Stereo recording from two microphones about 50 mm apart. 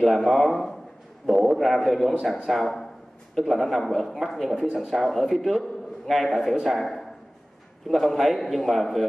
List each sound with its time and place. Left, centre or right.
0.0 s speech: centre